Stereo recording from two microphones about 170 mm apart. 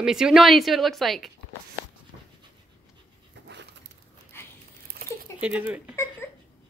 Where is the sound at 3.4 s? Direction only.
90° right.